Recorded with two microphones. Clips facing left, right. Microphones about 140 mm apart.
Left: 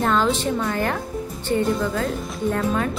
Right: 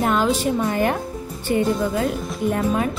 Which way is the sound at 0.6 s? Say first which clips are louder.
Right 3 dB; 20° right (ahead or behind).